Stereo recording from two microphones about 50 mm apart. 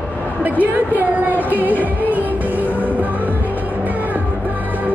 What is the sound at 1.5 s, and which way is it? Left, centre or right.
Music, right.